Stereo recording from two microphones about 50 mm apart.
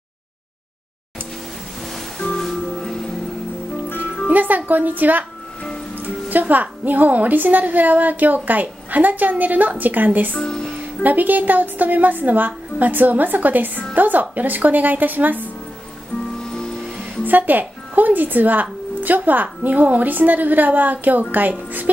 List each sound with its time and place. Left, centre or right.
2.1 s music: centre
4.3 s speech: right
17.2 s speech: right